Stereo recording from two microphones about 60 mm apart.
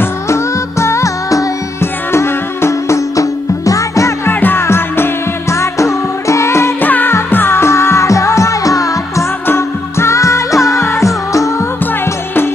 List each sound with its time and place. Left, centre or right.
0.3 s music: left
1.8 s music: left
3.2 s music: left
4.3 s music: left
6.8 s music: left
9.5 s music: left